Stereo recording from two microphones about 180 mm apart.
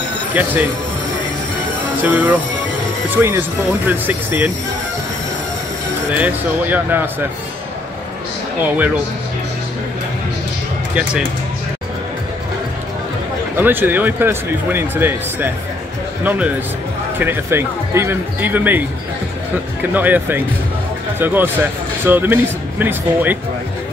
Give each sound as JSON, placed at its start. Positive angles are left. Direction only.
{"t": 0.3, "sound": "speech", "side_deg": -10}
{"t": 2.0, "sound": "speech", "side_deg": -10}
{"t": 6.1, "sound": "speech", "side_deg": -10}
{"t": 13.6, "sound": "speech", "side_deg": -10}